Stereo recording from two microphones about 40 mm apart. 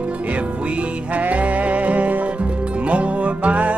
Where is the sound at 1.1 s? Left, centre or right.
Right.